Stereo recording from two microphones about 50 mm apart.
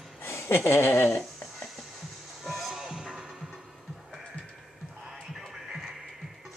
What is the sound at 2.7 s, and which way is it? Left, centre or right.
Music, centre.